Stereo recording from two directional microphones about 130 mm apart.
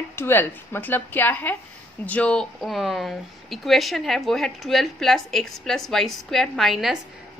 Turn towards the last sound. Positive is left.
turn(degrees=0)  # may be behind; listen again after turning